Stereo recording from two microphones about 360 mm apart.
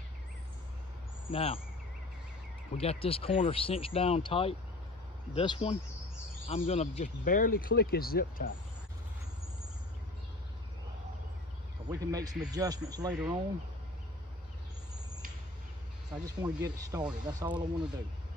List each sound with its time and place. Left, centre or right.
1.3 s speech: centre
2.8 s speech: centre
11.9 s speech: centre
16.1 s speech: centre